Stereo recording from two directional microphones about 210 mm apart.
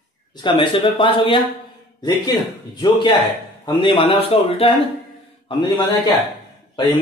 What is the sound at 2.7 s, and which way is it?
A man's voice, 20° left (ahead or behind).